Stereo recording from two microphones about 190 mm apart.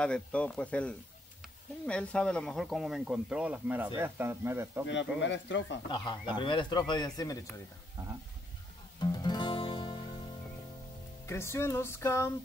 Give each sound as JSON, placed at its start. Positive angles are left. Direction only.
{"t": 0.0, "sound": "music", "side_deg": 5}
{"t": 1.9, "sound": "speech", "side_deg": 5}
{"t": 4.8, "sound": "speech", "side_deg": 75}
{"t": 5.9, "sound": "speech", "side_deg": 25}
{"t": 9.0, "sound": "music", "side_deg": 20}
{"t": 11.2, "sound": "music", "side_deg": 15}